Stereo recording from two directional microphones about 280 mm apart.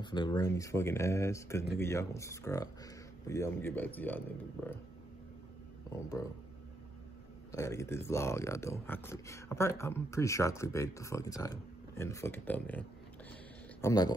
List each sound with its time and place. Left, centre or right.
0.0 s speech: centre
7.5 s speech: centre